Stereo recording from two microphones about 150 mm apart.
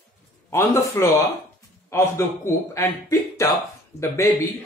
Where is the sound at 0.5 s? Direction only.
20° left (ahead or behind).